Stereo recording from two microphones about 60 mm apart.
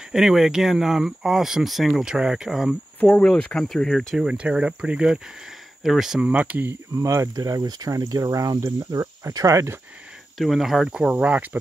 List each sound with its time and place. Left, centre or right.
0.1 s speech: centre
3.1 s speech: centre
3.6 s speech: centre
4.2 s speech: centre
5.9 s speech: centre
6.2 s speech: right
7.0 s speech: right
8.9 s speech: right
10.3 s speech: centre
11.2 s speech: right